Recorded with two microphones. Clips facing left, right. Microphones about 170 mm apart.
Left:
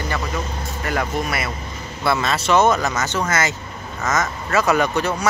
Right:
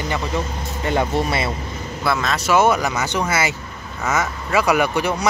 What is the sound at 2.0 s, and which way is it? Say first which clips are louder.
Speech: left 1 dB; centre (ahead or behind).